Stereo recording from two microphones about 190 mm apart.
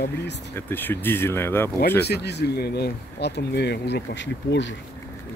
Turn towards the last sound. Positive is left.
turn(degrees=70)  # may be behind; listen again after turning